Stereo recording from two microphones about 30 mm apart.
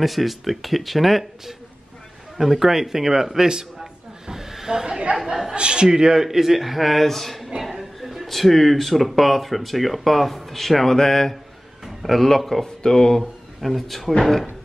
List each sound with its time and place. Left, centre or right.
0.0 s speech: centre
2.3 s a man's voice: centre
3.8 s snake: centre
5.2 s chatter: centre
5.5 s a man's voice: right
6.2 s speech: centre
7.4 s a sound: centre
8.3 s speech: centre
12.8 s speech: centre
13.6 s speech: centre